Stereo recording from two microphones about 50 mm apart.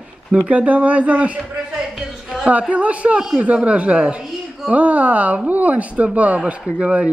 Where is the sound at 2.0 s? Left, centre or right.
Centre.